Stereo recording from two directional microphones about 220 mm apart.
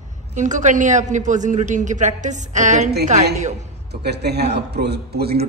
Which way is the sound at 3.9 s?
50° right (ahead or behind).